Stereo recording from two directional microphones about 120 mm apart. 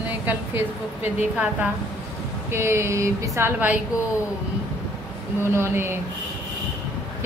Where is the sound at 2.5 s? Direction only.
20° right (ahead or behind).